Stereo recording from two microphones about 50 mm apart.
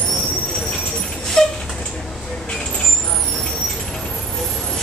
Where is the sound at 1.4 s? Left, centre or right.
Centre.